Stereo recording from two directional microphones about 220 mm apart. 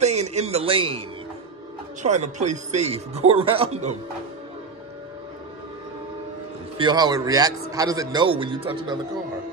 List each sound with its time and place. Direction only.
0.0 s a man's voice: 30° right (ahead or behind)
2.0 s a man's voice: 30° right (ahead or behind)
6.8 s a man's voice: 20° right (ahead or behind)